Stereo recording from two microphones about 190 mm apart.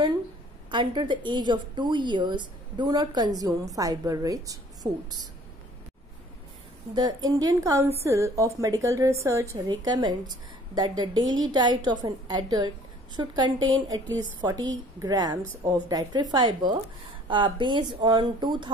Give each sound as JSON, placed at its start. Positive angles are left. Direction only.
{"t": 0.7, "sound": "a woman's voice", "side_deg": -25}
{"t": 7.0, "sound": "a woman's voice", "side_deg": -20}